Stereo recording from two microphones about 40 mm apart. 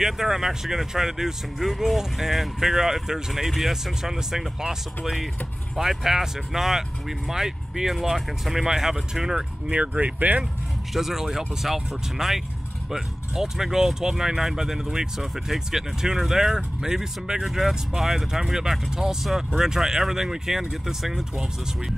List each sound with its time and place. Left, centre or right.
0.0 s speech: centre
9.7 s speech: right
10.9 s speech: centre